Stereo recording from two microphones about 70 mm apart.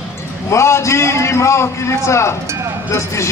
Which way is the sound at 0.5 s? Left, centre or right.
Left.